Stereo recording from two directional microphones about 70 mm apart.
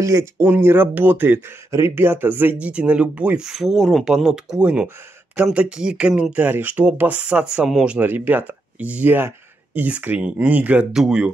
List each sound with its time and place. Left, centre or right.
0.0 s speech: right
0.4 s speech: right
1.7 s speech: right
2.7 s speech: centre
4.1 s speech: centre
6.3 s speech: right
8.1 s speech: right
10.9 s speech: centre